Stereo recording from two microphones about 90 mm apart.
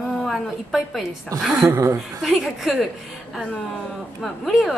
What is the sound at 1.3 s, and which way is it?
Speech, 40° right (ahead or behind).